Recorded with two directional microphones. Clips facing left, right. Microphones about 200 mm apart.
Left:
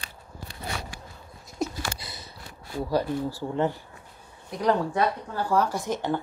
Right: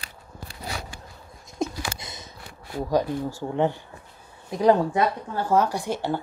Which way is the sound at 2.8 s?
15° right (ahead or behind).